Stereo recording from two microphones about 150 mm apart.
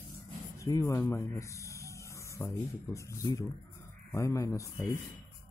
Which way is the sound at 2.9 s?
20° left (ahead or behind).